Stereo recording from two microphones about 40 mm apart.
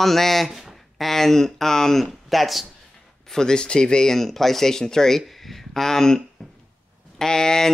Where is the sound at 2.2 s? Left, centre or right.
Centre.